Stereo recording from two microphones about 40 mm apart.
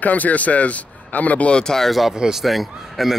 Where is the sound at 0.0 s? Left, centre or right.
Left.